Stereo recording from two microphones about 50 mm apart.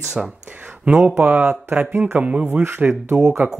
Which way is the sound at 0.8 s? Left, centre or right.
Centre.